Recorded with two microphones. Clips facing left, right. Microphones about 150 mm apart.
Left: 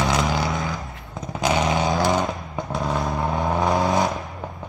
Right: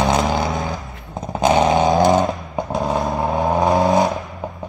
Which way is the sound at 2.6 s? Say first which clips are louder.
Right 5 dB; 20° right (ahead or behind).